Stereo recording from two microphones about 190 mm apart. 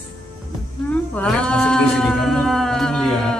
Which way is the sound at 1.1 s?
5° left (ahead or behind).